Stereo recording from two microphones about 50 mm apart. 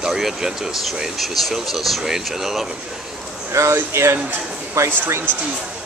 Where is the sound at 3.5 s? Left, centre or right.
Right.